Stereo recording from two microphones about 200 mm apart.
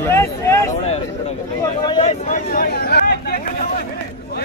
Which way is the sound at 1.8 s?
25° left (ahead or behind).